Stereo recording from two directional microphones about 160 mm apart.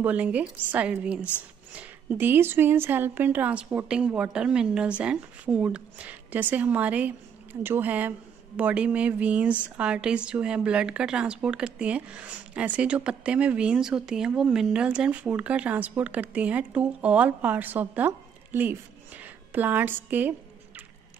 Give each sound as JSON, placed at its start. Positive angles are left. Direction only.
{"t": 0.0, "sound": "speech", "side_deg": -10}